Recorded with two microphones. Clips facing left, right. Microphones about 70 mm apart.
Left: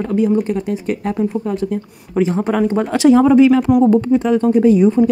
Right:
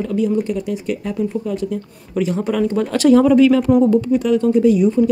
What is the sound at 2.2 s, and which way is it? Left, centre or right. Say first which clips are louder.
Speech: left 3 dB; left.